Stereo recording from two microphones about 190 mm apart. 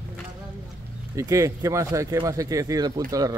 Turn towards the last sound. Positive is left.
turn(degrees=-20)  # may be behind; listen again after turning